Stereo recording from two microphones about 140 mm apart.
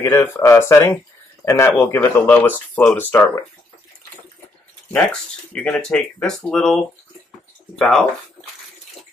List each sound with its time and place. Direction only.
0.0 s speech: 15° left (ahead or behind)
5.5 s speech: 5° left (ahead or behind)
7.8 s speech: 5° left (ahead or behind)